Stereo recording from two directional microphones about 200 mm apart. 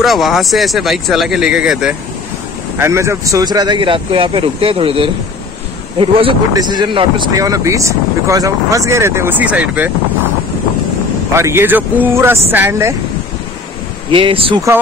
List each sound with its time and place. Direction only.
0.0 s speech: centre (ahead or behind)
2.8 s speech: 15° right (ahead or behind)
11.3 s speech: 10° right (ahead or behind)
14.1 s speech: 25° right (ahead or behind)